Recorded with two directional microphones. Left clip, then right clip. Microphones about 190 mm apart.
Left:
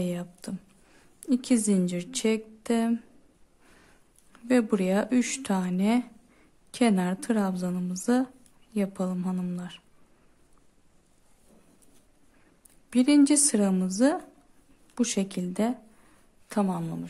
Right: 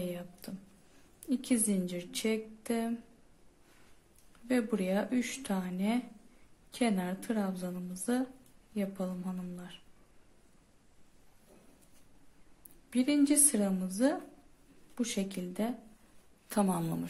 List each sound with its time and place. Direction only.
0.0 s a woman's voice: 25° left (ahead or behind)
4.3 s a woman's voice: 25° left (ahead or behind)
12.9 s a woman's voice: 25° left (ahead or behind)
16.4 s a woman's voice: 15° left (ahead or behind)